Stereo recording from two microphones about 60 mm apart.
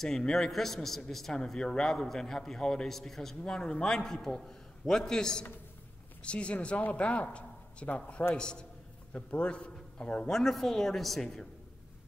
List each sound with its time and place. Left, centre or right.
0.0 s a man's voice: centre
10.3 s a woman's voice: centre